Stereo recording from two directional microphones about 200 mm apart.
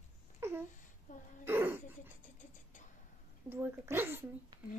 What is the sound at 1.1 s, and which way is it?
Speech, 40° left (ahead or behind).